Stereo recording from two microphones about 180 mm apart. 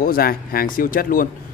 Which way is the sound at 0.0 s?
55° left (ahead or behind).